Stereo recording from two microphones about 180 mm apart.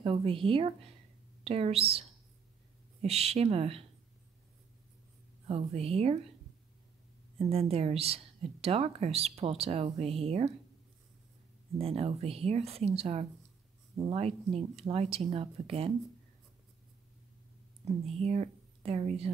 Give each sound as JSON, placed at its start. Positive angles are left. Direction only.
{"t": 0.0, "sound": "speech", "side_deg": -30}
{"t": 5.5, "sound": "speech", "side_deg": -35}
{"t": 7.3, "sound": "speech", "side_deg": -35}
{"t": 11.8, "sound": "speech", "side_deg": -35}
{"t": 17.8, "sound": "speech", "side_deg": -35}